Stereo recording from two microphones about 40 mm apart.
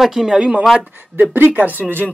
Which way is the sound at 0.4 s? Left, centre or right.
Right.